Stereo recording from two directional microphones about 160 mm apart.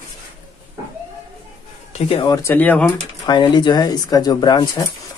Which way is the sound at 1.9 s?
35° left (ahead or behind).